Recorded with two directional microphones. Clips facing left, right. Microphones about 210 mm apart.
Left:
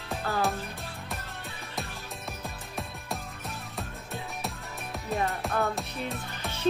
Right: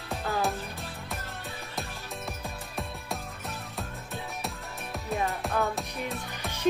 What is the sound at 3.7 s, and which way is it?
Music, centre (ahead or behind).